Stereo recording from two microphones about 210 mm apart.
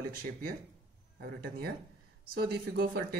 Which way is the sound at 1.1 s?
50° right (ahead or behind).